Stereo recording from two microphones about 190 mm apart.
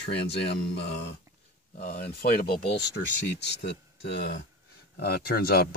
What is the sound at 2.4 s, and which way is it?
Speech, 60° left (ahead or behind).